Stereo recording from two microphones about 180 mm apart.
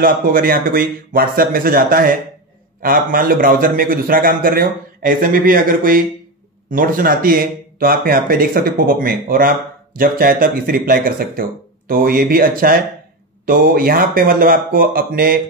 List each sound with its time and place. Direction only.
0.0 s speech: 55° right (ahead or behind)